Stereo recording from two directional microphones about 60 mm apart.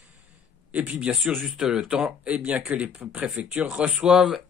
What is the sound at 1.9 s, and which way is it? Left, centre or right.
Speech, centre.